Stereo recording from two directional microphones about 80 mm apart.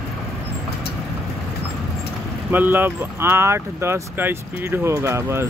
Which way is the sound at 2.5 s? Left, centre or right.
Right.